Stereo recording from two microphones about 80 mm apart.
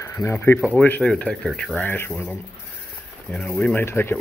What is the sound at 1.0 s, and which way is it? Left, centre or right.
Speech, centre.